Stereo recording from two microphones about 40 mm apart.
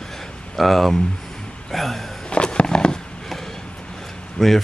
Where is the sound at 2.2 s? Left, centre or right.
Left.